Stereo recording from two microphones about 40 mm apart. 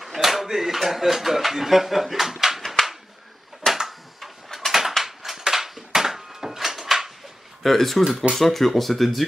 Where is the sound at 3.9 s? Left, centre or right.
Centre.